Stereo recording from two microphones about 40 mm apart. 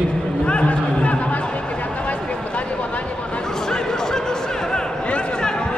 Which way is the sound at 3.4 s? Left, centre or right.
Centre.